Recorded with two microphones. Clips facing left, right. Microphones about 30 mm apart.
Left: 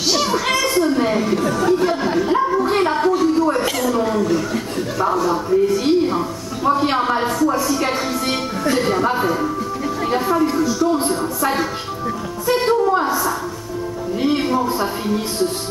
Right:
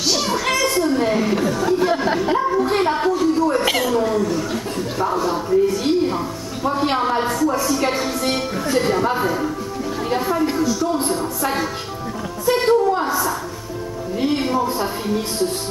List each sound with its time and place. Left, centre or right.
0.1 s a sound: centre
1.3 s a woman's voice: centre
3.2 s a sound: centre
3.6 s speech: centre
3.9 s a woman's voice: centre
5.1 s speech: centre
5.5 s a woman's voice: centre
12.4 s a sound: centre
14.2 s speech: centre